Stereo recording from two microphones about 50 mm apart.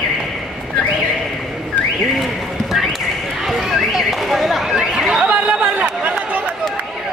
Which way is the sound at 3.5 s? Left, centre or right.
Centre.